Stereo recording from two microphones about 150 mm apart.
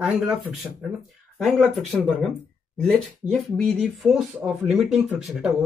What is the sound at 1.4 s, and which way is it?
Speech, centre (ahead or behind).